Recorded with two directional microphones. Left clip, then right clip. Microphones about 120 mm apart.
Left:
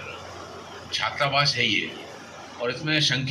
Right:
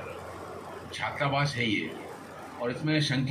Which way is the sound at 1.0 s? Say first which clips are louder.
Left 6 dB; 35° right (ahead or behind).